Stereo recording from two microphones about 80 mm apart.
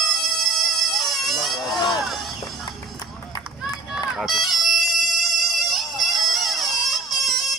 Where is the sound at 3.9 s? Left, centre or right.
Centre.